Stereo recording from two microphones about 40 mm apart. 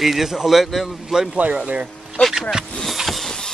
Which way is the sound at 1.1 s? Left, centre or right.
Centre.